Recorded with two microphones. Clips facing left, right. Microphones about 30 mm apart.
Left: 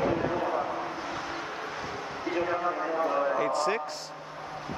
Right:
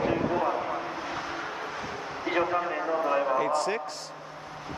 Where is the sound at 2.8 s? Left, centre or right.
Centre.